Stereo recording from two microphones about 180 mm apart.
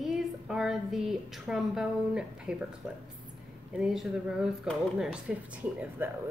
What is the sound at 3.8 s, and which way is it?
A woman's voice, 5° right (ahead or behind).